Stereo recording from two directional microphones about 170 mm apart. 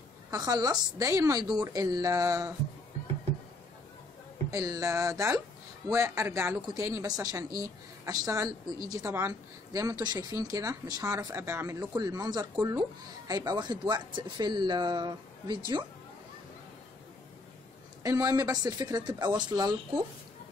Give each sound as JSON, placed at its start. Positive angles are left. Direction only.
{"t": 0.3, "sound": "a woman's voice", "side_deg": -20}
{"t": 4.5, "sound": "a woman's voice", "side_deg": -20}
{"t": 18.0, "sound": "a woman's voice", "side_deg": -20}